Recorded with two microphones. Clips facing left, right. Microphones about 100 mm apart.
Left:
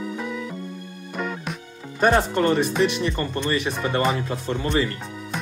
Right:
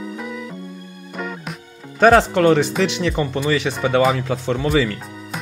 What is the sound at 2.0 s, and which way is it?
Speech, 90° right.